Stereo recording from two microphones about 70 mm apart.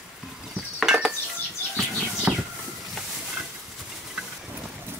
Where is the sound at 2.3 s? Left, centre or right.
Centre.